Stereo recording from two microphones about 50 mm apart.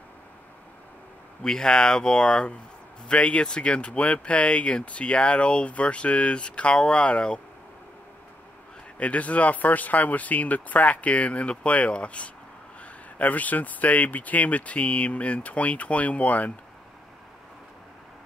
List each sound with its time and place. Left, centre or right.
1.4 s speech: centre
9.0 s speech: left